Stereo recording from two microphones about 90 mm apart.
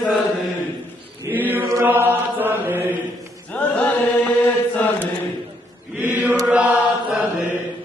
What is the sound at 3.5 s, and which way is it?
Chant, 15° left (ahead or behind).